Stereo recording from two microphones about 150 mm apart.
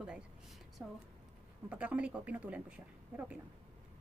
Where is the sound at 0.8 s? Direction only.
15° right (ahead or behind).